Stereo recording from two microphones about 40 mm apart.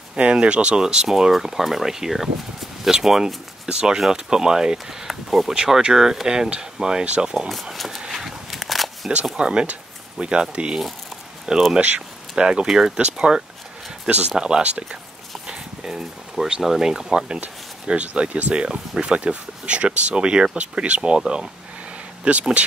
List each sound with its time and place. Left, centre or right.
0.2 s speech: right
7.7 s speech: centre
8.1 s walk: centre
9.4 s speech: right
11.8 s speech: right
12.4 s speech: centre
14.0 s speech: right
14.3 s speech: centre
15.4 s a sound: centre
16.6 s speech: centre
17.4 s speech: right
22.2 s speech: right